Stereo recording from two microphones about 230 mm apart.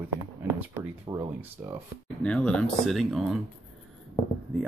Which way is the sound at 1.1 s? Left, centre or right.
Centre.